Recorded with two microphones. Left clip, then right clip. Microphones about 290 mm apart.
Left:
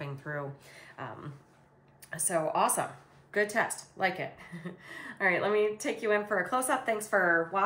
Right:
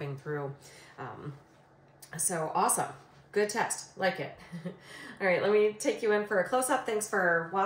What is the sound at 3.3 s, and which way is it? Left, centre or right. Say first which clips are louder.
Speech: left 1 dB; centre.